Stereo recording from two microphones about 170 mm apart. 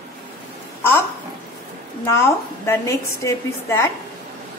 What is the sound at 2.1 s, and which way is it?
A woman's voice, 15° left (ahead or behind).